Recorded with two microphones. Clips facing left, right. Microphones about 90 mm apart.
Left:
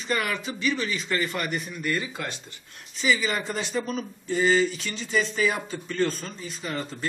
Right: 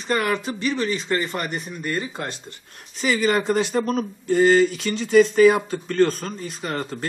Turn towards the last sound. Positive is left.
turn(degrees=-60)  # may be behind; listen again after turning